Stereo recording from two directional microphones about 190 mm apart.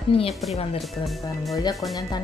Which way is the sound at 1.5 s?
20° left (ahead or behind).